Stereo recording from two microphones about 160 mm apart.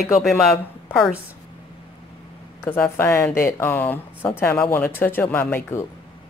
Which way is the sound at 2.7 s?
15° left (ahead or behind).